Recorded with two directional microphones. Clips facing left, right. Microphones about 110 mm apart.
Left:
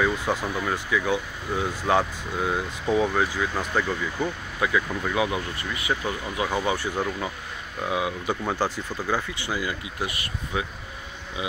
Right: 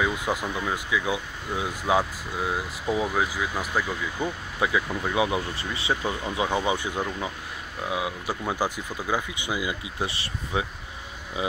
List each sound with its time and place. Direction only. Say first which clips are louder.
0.0 s speech: left 2 dB; 10° right (ahead or behind)
4.6 s speech: left 1 dB; 20° right (ahead or behind)
7.0 s speech: left 2 dB; centre (ahead or behind)
9.9 s speech: even; 30° right (ahead or behind)